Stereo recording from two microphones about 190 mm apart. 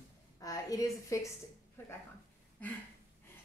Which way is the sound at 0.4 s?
15° left (ahead or behind).